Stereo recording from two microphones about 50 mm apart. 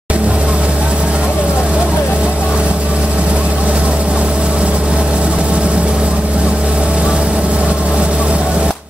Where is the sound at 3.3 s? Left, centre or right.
Right.